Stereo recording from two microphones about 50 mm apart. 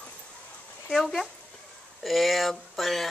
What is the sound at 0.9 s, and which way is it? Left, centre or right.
A woman's voice, centre.